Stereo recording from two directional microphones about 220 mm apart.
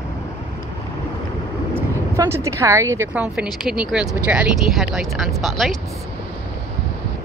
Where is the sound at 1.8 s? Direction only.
10° right (ahead or behind).